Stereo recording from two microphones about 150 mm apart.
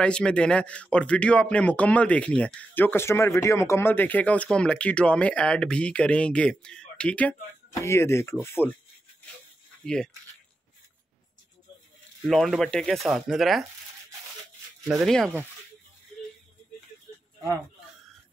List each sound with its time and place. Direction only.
0.0 s a man's voice: 5° left (ahead or behind)
12.3 s speech: centre (ahead or behind)
15.0 s speech: 5° left (ahead or behind)